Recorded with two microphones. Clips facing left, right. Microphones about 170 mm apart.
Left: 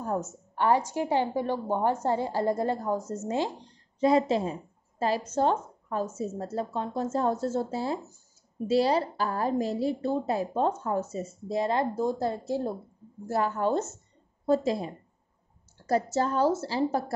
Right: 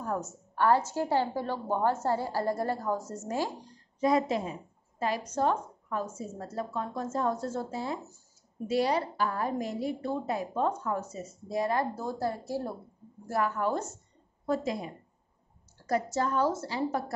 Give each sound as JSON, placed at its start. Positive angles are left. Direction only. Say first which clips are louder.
{"t": 0.0, "sound": "a woman's voice", "louder": "left 3 dB", "side_deg": 25}
{"t": 15.9, "sound": "speech", "louder": "left 3 dB", "side_deg": 30}